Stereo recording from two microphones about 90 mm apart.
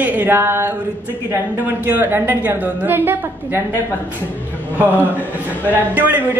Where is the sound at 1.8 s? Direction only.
25° right (ahead or behind).